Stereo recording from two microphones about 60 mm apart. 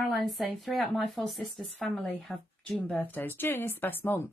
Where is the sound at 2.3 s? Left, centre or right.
Centre.